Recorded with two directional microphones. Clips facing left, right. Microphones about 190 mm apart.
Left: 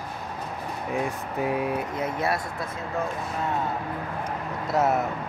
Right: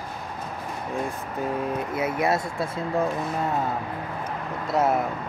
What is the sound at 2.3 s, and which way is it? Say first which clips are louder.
Speech: right 4 dB; 25° right (ahead or behind).